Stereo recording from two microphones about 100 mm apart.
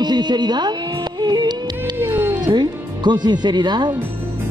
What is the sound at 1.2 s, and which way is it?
Music, 45° right (ahead or behind).